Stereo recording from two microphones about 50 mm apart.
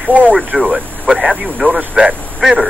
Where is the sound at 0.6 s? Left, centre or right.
Centre.